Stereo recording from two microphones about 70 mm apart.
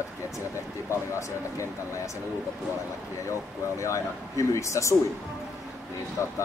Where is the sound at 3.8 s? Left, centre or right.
Left.